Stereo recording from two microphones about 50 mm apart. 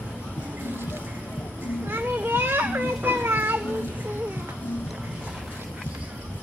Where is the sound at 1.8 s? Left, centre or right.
Right.